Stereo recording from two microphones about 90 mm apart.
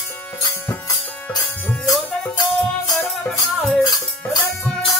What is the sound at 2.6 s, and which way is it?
Music, 5° left (ahead or behind).